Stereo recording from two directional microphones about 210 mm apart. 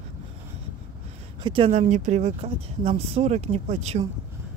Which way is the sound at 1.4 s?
25° right (ahead or behind).